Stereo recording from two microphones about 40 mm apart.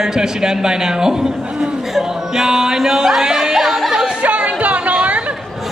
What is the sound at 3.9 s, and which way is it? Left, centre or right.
Music, centre.